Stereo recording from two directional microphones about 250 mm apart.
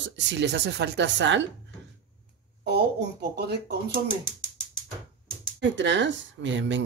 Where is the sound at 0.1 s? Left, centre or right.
Right.